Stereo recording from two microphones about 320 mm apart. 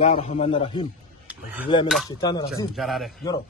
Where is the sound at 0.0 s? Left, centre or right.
Centre.